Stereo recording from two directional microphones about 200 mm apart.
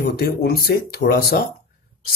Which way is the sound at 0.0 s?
50° left (ahead or behind).